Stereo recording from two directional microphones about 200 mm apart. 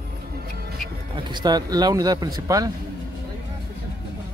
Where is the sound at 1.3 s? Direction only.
20° right (ahead or behind).